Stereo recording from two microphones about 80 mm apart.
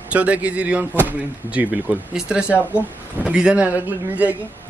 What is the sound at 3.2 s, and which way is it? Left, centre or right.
Speech, centre.